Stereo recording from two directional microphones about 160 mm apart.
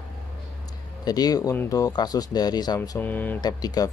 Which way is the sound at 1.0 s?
25° left (ahead or behind).